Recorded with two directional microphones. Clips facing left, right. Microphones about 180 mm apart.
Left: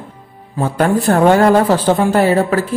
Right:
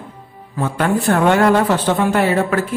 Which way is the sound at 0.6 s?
35° left (ahead or behind).